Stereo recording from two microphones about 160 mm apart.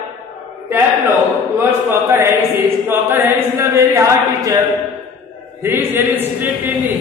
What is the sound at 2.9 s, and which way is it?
Chant, 15° right (ahead or behind).